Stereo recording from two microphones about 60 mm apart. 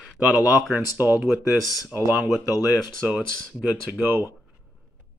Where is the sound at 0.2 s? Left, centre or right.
Centre.